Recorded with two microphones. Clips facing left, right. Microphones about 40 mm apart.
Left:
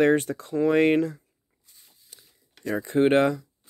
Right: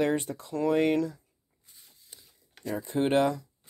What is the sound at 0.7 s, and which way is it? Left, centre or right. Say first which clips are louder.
Speech: left 4 dB; left.